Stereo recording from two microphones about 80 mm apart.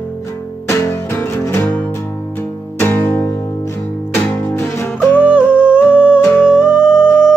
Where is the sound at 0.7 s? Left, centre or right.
Left.